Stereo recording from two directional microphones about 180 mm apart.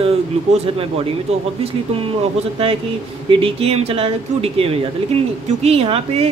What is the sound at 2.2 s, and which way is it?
Speech, 30° right (ahead or behind).